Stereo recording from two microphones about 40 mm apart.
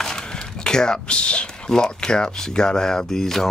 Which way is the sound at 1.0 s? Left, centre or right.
Left.